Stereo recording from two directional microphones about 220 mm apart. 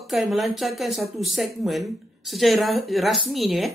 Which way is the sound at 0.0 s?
Centre (ahead or behind).